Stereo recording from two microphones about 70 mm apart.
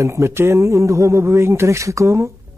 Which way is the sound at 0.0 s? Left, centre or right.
Right.